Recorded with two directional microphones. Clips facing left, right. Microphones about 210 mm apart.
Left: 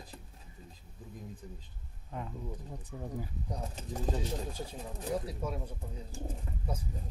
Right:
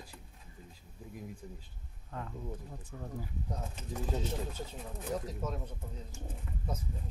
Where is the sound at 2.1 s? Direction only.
15° left (ahead or behind).